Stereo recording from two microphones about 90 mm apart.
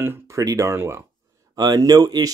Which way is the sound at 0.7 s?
30° right (ahead or behind).